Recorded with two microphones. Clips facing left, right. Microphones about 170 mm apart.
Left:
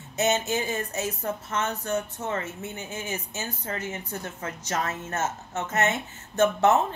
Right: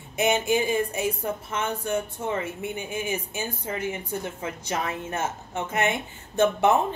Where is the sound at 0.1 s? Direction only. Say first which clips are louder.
Right 2 dB; 10° right (ahead or behind).